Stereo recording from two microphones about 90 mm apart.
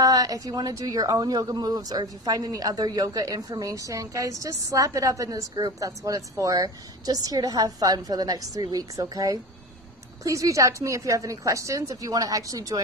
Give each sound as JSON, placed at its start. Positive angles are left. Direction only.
{"t": 0.0, "sound": "a woman's voice", "side_deg": -45}